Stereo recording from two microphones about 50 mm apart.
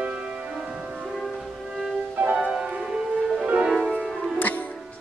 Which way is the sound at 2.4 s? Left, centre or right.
Centre.